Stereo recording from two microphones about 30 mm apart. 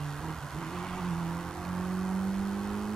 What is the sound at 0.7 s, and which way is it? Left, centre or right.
Vehicle, centre.